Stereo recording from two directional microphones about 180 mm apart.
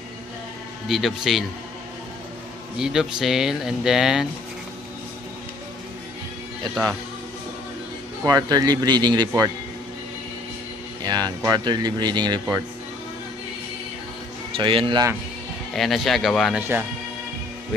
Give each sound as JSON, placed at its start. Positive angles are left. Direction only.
{"t": 0.8, "sound": "speech", "side_deg": 0}
{"t": 2.8, "sound": "speech", "side_deg": -5}
{"t": 8.2, "sound": "speech", "side_deg": -20}
{"t": 11.0, "sound": "speech", "side_deg": -25}
{"t": 14.6, "sound": "speech", "side_deg": -30}
{"t": 15.7, "sound": "speech", "side_deg": 0}